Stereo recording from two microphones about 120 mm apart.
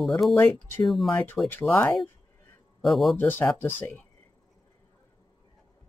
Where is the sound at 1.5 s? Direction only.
15° left (ahead or behind).